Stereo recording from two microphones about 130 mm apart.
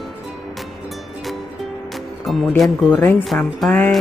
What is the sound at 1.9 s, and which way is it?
Music, centre (ahead or behind).